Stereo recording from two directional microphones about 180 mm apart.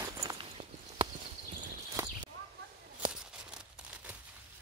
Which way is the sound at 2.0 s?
15° right (ahead or behind).